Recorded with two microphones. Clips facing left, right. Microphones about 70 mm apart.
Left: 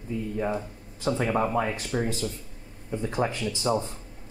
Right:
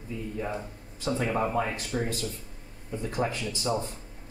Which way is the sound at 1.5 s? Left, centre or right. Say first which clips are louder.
Left 2 dB; centre.